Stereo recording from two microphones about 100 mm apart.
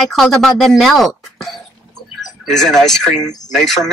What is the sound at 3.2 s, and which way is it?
Speech, 40° left (ahead or behind).